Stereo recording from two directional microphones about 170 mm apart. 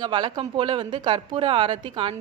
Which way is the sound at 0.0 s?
30° right (ahead or behind).